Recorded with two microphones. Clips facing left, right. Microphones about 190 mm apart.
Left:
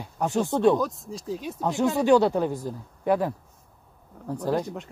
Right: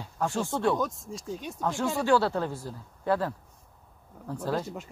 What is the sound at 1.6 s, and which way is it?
Speech, 20° left (ahead or behind).